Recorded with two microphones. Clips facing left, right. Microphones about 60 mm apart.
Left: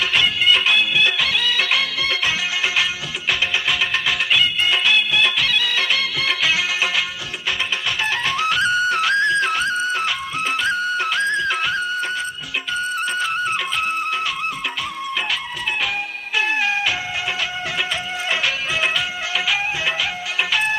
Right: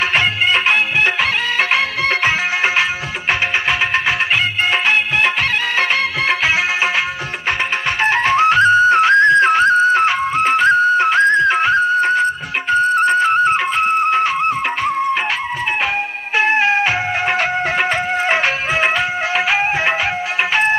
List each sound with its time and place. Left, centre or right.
0.1 s music: right
8.0 s music: right
16.3 s music: right